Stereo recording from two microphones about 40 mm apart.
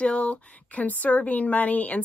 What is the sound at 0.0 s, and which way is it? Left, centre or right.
A woman's voice, left.